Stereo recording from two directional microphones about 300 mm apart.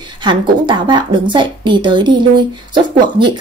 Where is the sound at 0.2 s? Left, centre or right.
Centre.